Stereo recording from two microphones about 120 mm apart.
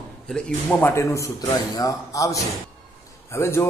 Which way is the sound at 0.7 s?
15° left (ahead or behind).